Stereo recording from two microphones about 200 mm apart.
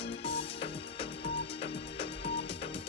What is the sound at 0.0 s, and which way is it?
Music, 30° left (ahead or behind).